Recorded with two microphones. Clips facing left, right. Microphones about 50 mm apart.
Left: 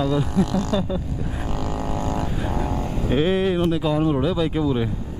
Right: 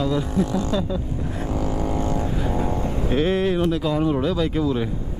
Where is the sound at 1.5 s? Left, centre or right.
Left.